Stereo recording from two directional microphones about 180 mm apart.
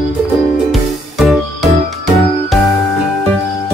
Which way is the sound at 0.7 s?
Centre (ahead or behind).